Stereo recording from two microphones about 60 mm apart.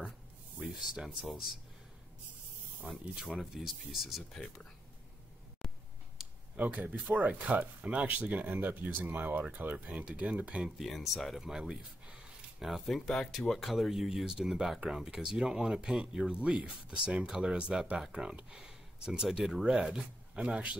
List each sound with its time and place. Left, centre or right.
0.6 s speech: centre
2.9 s speech: centre
5.6 s a sound: centre
6.5 s speech: right
10.8 s speech: centre
12.8 s speech: centre; by 20.7 s right